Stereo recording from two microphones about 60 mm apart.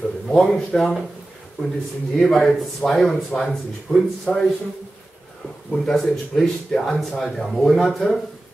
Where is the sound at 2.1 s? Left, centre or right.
Centre.